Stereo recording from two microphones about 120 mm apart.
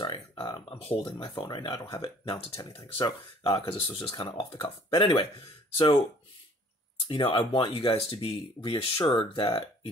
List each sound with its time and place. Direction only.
0.0 s a sound: 45° left (ahead or behind)
1.2 s speech: 45° left (ahead or behind)
2.8 s speech: 30° left (ahead or behind)
3.4 s speech: 50° left (ahead or behind)
7.1 s speech: 45° left (ahead or behind)